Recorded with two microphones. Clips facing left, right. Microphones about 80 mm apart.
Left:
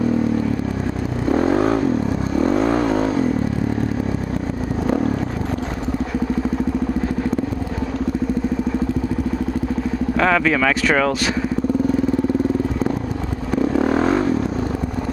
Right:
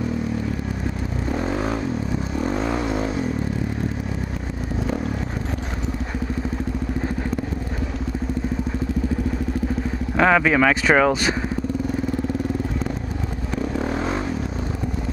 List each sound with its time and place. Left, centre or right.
1.3 s vehicle: left
10.1 s speech: centre
13.6 s vehicle: left